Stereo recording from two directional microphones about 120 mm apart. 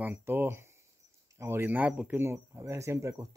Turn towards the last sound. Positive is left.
turn(degrees=-25)  # may be behind; listen again after turning